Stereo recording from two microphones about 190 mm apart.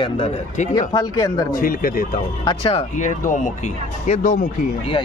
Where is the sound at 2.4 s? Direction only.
25° left (ahead or behind).